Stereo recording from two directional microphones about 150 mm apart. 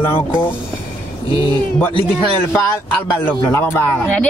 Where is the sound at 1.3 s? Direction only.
35° left (ahead or behind).